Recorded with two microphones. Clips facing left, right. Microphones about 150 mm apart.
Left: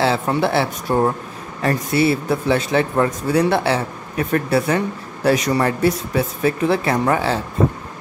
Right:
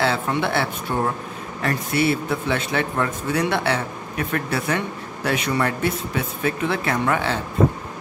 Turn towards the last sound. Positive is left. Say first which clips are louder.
# left 4 dB
turn(degrees=35)  # may be behind; listen again after turning